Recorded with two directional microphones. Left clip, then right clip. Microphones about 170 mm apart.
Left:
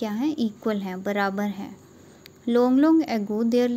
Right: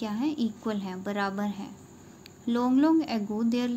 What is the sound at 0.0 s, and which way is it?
A woman's voice, 35° left (ahead or behind).